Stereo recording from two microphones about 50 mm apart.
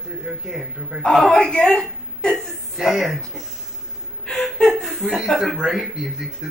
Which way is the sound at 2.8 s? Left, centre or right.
Centre.